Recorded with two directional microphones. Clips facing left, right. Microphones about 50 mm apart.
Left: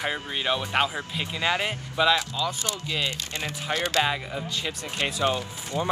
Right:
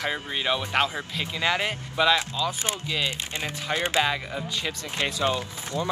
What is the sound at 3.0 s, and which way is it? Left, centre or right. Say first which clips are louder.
Speech: right 1 dB; right.